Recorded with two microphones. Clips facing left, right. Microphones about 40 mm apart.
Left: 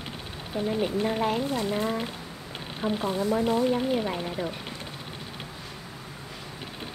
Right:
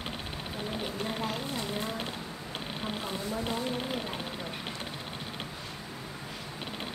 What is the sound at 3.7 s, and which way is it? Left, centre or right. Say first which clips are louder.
Speech: left 8 dB; left.